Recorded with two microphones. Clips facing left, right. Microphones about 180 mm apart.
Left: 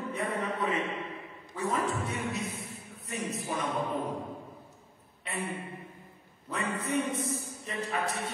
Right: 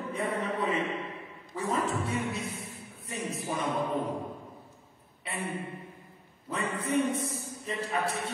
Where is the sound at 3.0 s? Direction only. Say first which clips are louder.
Even; 30° right (ahead or behind).